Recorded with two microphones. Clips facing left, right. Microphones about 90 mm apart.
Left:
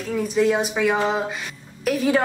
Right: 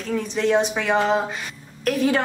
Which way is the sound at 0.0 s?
5° left (ahead or behind).